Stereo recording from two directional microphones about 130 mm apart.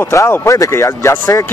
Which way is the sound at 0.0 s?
20° left (ahead or behind).